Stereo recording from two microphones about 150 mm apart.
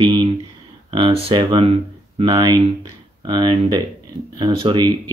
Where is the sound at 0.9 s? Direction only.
35° right (ahead or behind).